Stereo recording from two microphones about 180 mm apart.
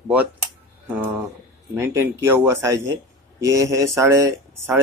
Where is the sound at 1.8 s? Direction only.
15° right (ahead or behind).